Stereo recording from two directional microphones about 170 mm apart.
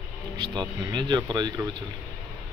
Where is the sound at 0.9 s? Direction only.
25° right (ahead or behind).